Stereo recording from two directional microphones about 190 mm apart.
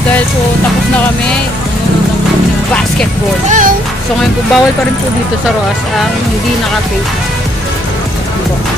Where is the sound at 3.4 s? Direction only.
40° right (ahead or behind).